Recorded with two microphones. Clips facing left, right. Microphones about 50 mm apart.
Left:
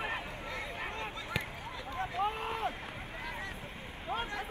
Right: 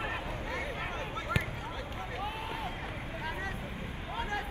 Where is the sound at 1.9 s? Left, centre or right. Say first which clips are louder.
Left 7 dB; left.